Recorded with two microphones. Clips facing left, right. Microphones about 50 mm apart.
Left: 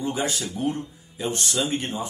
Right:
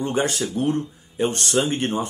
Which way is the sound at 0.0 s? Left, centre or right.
Right.